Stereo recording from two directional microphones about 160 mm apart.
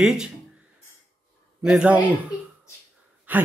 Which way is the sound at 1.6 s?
5° right (ahead or behind).